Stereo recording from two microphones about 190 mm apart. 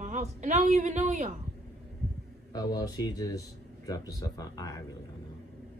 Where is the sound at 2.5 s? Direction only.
20° left (ahead or behind).